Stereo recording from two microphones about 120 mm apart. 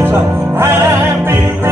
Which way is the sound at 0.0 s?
20° right (ahead or behind).